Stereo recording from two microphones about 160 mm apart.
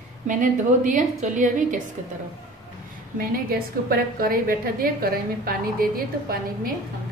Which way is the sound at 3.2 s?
65° right (ahead or behind).